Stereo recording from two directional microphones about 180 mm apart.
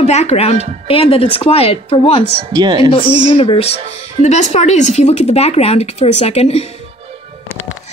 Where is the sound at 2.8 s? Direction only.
30° left (ahead or behind).